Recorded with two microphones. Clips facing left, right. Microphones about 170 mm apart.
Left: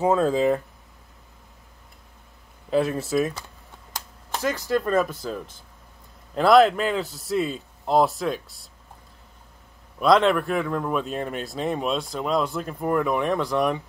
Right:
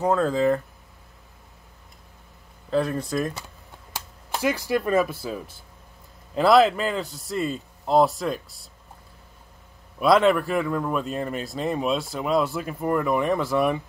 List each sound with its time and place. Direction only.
0.2 s speech: 15° left (ahead or behind)
2.7 s speech: 5° left (ahead or behind)
4.3 s speech: 10° right (ahead or behind)
9.9 s speech: 5° right (ahead or behind)